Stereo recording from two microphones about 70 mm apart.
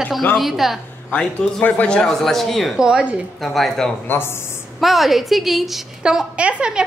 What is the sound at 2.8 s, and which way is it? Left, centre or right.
Speech, centre.